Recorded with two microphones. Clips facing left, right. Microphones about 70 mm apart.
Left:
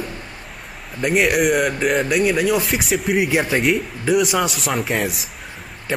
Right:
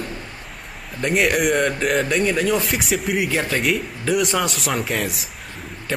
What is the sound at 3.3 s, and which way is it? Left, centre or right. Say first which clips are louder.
Speech: left 3 dB; centre.